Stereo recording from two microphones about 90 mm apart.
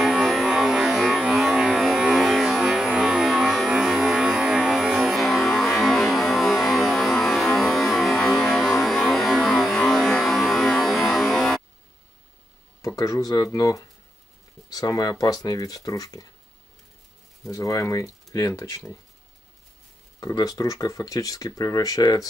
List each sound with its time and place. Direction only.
0.0 s a sound: centre (ahead or behind)
12.8 s speech: 40° left (ahead or behind)
17.5 s speech: 40° left (ahead or behind)
20.2 s speech: 40° left (ahead or behind)